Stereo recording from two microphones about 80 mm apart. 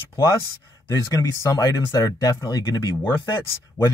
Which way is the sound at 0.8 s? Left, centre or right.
Left.